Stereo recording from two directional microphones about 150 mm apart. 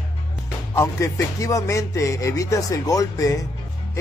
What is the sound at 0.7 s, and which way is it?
Speech, 20° left (ahead or behind).